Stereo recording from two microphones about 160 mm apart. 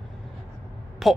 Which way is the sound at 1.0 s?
Centre (ahead or behind).